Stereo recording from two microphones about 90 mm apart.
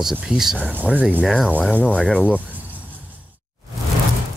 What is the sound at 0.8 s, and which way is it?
Speech, 15° right (ahead or behind).